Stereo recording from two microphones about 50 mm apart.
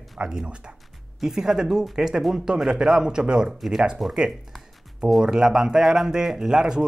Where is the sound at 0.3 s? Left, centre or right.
Centre.